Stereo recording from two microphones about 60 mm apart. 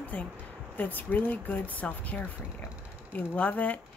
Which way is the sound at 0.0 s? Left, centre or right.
Left.